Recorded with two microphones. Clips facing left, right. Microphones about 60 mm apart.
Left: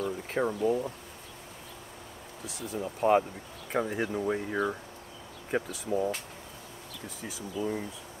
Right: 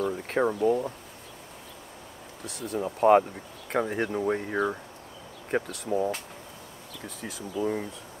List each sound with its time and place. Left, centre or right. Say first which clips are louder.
0.0 s a sound: right 4 dB; centre
0.5 s speech: right 3 dB; centre
2.4 s speech: right 4 dB; centre
3.0 s speech: right 5 dB; centre
3.8 s speech: right 3 dB; centre
7.2 s speech: right 3 dB; centre
7.6 s speech: right 4 dB; centre